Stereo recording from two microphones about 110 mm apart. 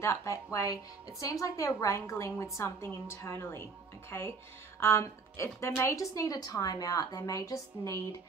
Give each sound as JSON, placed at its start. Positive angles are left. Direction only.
{"t": 0.0, "sound": "a woman's voice", "side_deg": 30}